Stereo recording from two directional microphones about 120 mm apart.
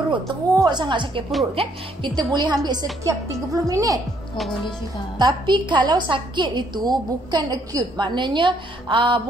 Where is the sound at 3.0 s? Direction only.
25° right (ahead or behind).